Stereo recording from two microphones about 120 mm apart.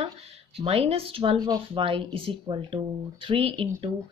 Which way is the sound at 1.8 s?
50° right (ahead or behind).